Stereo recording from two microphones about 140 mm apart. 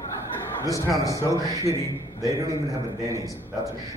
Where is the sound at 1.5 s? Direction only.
20° right (ahead or behind).